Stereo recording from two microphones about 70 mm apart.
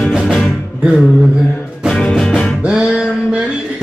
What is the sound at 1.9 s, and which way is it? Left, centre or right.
Music, centre.